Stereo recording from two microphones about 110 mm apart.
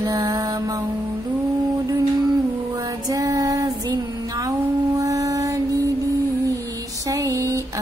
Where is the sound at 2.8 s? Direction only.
30° right (ahead or behind).